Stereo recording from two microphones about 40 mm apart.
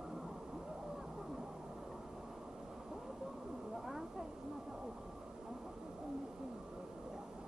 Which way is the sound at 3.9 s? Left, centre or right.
Centre.